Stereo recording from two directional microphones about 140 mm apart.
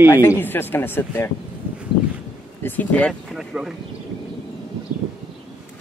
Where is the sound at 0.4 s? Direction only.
15° left (ahead or behind).